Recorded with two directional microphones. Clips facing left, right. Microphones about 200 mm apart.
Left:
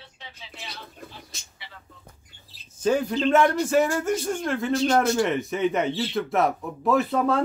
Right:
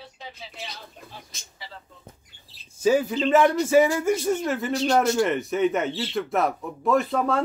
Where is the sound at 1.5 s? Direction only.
40° right (ahead or behind).